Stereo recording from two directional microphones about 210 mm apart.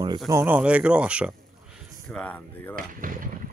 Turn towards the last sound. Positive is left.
turn(degrees=-40)  # may be behind; listen again after turning